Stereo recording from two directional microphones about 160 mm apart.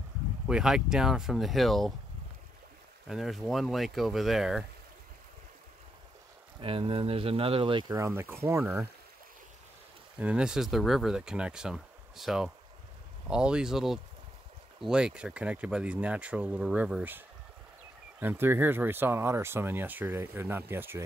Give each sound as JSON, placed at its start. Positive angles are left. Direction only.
{"t": 0.5, "sound": "speech", "side_deg": -5}
{"t": 3.1, "sound": "speech", "side_deg": 0}
{"t": 6.6, "sound": "speech", "side_deg": -35}
{"t": 7.9, "sound": "speech", "side_deg": -15}
{"t": 10.1, "sound": "speech", "side_deg": -5}
{"t": 18.2, "sound": "speech", "side_deg": -15}